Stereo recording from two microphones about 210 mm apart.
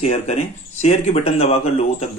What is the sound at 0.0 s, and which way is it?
A man's voice, 30° left (ahead or behind).